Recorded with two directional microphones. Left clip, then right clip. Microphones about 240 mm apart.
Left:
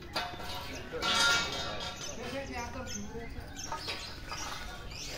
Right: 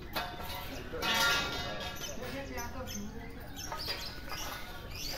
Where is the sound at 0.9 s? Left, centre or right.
Left.